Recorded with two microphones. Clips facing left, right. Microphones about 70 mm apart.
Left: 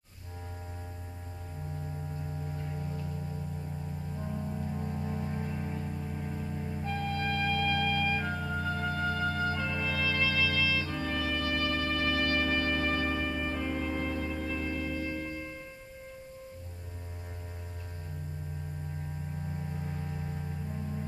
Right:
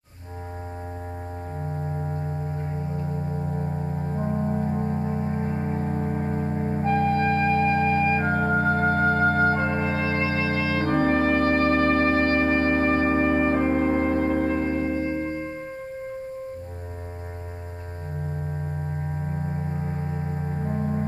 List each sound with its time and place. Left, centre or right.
1.8 s music: right
19.3 s music: right